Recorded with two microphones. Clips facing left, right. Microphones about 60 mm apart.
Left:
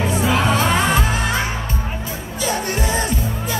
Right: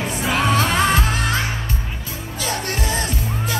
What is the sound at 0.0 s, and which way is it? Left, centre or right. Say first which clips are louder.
Music: left 2 dB; centre.